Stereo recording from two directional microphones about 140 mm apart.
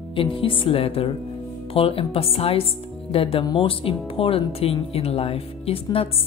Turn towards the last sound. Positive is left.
turn(degrees=40)  # may be behind; listen again after turning